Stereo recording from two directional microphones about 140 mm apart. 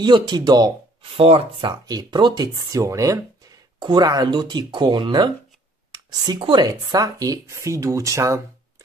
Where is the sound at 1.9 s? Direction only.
30° right (ahead or behind).